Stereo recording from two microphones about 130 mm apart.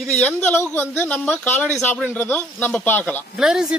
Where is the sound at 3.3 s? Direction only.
5° right (ahead or behind).